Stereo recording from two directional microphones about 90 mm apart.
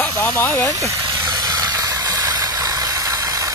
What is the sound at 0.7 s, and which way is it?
Speech, 35° right (ahead or behind).